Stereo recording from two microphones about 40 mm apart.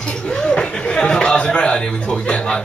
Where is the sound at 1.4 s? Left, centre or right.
Left.